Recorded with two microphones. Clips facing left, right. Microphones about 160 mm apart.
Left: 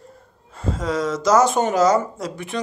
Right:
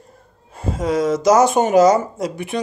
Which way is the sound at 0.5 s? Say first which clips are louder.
Right 4 dB; 15° right (ahead or behind).